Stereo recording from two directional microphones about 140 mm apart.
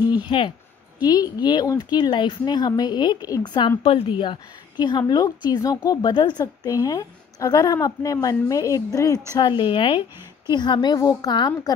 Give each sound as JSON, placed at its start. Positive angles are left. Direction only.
{"t": 0.3, "sound": "a woman's voice", "side_deg": 35}